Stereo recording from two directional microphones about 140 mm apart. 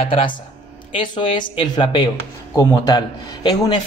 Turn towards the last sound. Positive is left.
turn(degrees=30)  # may be behind; listen again after turning